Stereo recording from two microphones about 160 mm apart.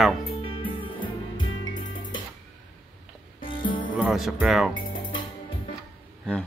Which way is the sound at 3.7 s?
30° left (ahead or behind).